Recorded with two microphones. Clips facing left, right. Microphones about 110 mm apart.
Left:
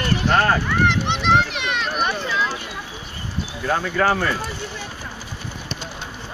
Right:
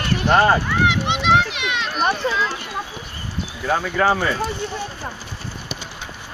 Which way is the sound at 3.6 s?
Centre (ahead or behind).